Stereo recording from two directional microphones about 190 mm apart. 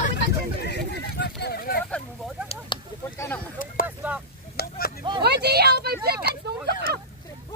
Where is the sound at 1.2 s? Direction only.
60° left (ahead or behind).